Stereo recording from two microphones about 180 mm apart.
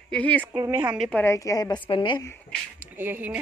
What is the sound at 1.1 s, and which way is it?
A woman's voice, 15° left (ahead or behind).